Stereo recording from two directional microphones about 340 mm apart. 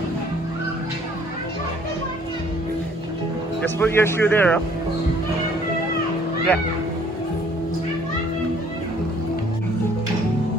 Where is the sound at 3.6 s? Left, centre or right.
Centre.